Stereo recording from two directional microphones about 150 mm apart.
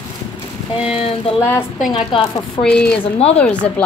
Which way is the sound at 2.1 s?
35° left (ahead or behind).